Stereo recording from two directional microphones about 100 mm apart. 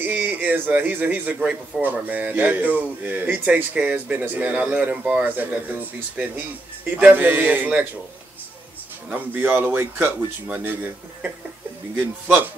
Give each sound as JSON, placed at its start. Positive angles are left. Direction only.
{"t": 0.0, "sound": "a man's voice", "side_deg": -15}
{"t": 9.1, "sound": "speech", "side_deg": -20}